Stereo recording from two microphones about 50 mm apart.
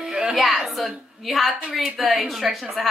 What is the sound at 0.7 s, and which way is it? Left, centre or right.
A woman's voice, centre.